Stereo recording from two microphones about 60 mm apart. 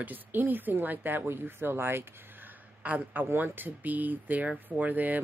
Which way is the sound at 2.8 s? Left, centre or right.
Right.